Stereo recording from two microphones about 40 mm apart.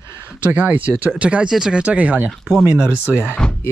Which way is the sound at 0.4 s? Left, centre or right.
Right.